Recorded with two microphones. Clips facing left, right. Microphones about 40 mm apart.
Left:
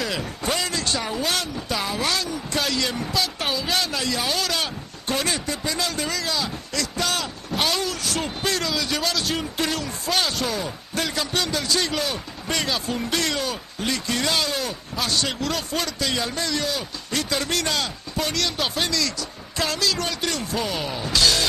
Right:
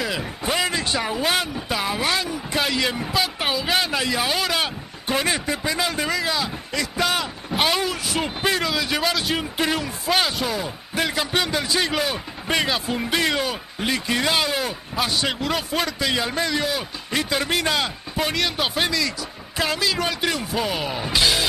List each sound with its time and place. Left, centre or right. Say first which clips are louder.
0.0 s speech: right 1 dB; centre